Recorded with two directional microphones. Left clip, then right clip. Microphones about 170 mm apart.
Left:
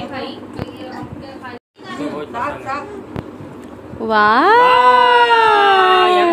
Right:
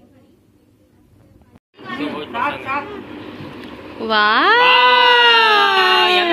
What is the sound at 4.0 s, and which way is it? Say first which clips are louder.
Speech: left 2 dB; 30° left (ahead or behind).